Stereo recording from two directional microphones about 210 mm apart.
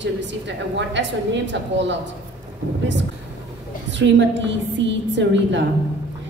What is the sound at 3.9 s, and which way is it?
A woman's voice, 60° right (ahead or behind).